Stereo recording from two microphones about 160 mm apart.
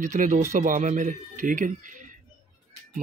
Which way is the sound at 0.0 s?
50° right (ahead or behind).